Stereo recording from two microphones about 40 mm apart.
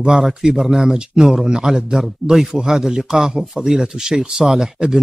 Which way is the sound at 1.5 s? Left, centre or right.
Centre.